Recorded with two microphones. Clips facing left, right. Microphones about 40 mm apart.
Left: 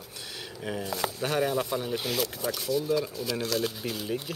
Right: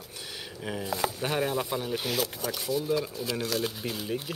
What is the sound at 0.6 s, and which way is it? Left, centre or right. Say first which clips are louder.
Speech: right 1 dB; centre.